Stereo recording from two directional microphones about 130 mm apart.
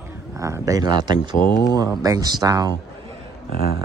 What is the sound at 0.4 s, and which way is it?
A man's voice, 25° right (ahead or behind).